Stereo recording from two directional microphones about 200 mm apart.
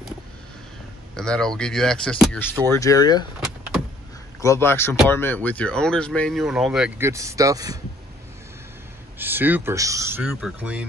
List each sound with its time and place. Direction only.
1.1 s speech: 5° left (ahead or behind)
2.7 s speech: 15° left (ahead or behind)
4.4 s speech: 15° left (ahead or behind); by 6.9 s 5° right (ahead or behind)
7.0 s speech: 15° right (ahead or behind)
9.2 s speech: 10° right (ahead or behind)